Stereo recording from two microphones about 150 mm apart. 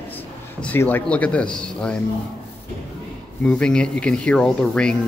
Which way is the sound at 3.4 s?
5° left (ahead or behind).